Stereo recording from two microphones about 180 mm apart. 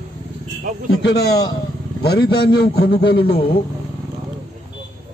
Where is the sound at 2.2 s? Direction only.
25° left (ahead or behind).